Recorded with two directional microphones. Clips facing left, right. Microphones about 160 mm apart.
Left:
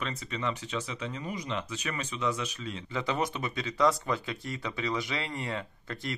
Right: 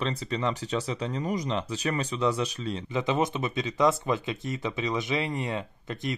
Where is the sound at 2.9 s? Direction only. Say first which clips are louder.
Right 4 dB; 20° right (ahead or behind).